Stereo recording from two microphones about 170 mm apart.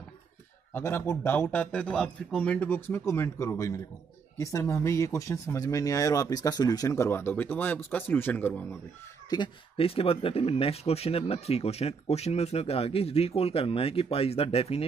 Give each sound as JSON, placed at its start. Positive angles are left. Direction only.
{"t": 0.7, "sound": "speech", "side_deg": 15}
{"t": 9.3, "sound": "speech", "side_deg": 30}